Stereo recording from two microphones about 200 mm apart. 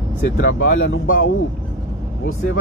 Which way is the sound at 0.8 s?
70° left (ahead or behind).